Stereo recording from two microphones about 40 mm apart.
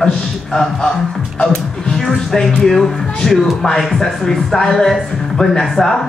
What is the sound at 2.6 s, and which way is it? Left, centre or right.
Speech, centre.